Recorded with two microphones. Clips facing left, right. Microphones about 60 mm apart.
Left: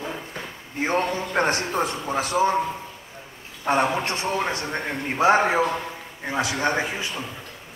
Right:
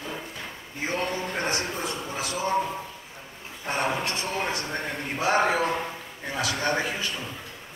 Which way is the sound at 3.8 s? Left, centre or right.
Left.